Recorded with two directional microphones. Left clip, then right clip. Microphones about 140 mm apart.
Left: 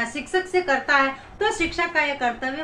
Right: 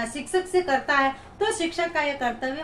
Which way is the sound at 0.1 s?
10° right (ahead or behind).